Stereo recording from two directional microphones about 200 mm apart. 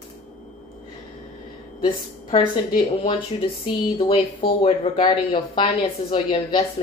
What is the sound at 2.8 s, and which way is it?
Speech, 25° left (ahead or behind).